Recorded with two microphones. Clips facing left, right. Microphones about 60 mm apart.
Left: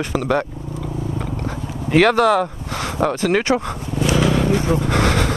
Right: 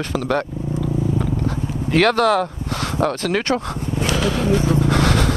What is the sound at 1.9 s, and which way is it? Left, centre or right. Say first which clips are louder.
Speech: left 2 dB; centre.